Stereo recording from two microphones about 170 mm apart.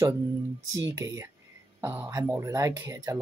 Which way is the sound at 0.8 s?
20° right (ahead or behind).